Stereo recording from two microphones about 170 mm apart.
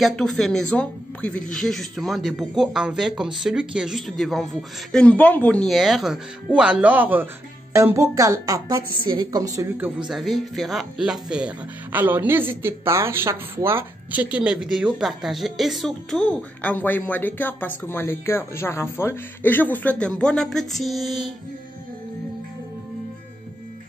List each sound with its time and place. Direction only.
0.0 s speech: centre (ahead or behind)